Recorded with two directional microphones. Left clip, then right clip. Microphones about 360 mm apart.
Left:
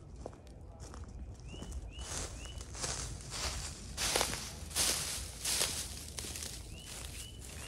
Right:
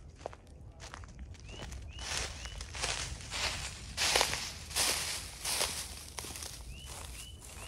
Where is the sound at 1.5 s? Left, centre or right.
Right.